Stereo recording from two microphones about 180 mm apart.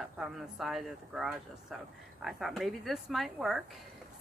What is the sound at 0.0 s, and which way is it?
Speech, centre (ahead or behind).